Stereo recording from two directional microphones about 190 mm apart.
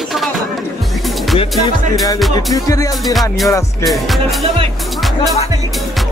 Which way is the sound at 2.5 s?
15° left (ahead or behind).